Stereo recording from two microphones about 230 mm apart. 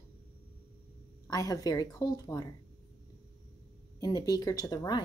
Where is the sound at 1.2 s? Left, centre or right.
Centre.